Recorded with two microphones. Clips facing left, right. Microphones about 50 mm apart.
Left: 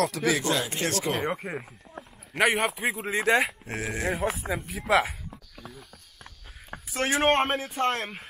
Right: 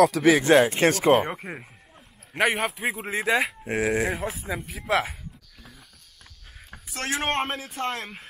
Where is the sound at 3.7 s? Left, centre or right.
Right.